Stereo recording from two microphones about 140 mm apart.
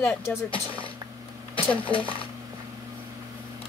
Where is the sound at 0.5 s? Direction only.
40° left (ahead or behind).